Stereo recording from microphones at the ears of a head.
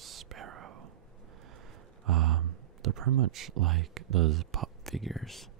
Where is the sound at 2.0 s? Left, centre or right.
Right.